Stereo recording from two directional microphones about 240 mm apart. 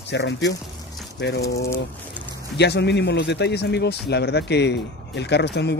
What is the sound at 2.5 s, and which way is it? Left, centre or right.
Speech, left.